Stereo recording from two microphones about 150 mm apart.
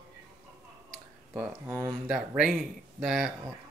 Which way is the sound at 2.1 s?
5° right (ahead or behind).